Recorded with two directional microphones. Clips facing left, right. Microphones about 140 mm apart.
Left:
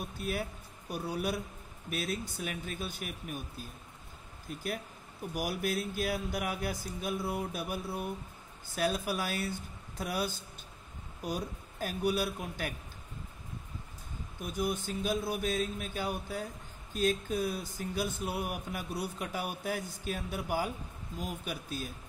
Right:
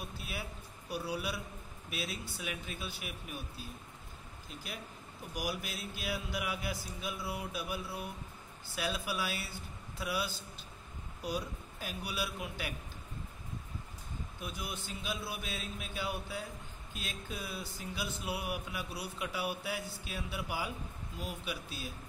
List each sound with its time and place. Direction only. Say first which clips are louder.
0.2 s a man's voice: left 8 dB; 45° left (ahead or behind)
5.3 s speech: left 6 dB; 50° left (ahead or behind)
14.4 s speech: left 10 dB; 45° left (ahead or behind)